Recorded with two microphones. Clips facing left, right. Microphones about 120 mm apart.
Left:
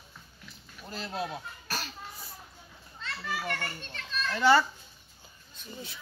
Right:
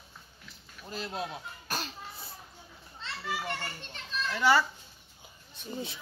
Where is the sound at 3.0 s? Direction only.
20° right (ahead or behind).